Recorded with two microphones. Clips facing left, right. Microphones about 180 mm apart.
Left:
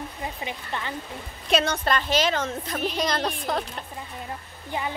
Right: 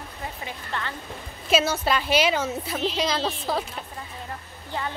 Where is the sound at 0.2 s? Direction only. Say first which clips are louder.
Even; 15° left (ahead or behind).